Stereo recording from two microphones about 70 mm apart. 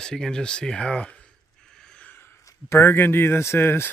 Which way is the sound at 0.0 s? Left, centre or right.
Centre.